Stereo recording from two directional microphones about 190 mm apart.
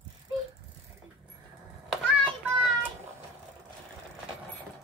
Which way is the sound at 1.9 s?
Centre (ahead or behind).